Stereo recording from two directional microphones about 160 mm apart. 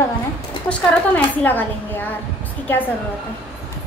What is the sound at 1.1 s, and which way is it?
A woman's voice, 10° left (ahead or behind).